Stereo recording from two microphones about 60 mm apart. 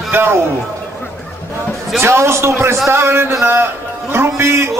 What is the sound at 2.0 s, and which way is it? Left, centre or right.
A man's voice, right.